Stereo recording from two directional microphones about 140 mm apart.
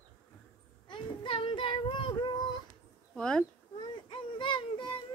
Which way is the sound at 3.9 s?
35° left (ahead or behind).